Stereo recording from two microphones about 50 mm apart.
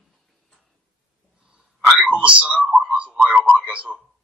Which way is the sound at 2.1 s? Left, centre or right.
Right.